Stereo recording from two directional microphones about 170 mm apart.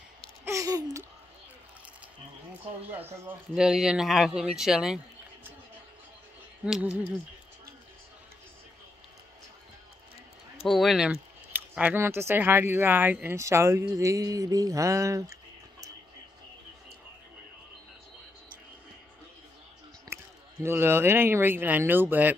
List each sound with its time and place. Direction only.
0.5 s a sound: 20° right (ahead or behind)
2.9 s speech: 10° right (ahead or behind)
6.6 s speech: 5° right (ahead or behind)
10.6 s speech: centre (ahead or behind); by 15.3 s 15° right (ahead or behind)
20.1 s a sound: 15° right (ahead or behind)
20.6 s speech: 15° right (ahead or behind)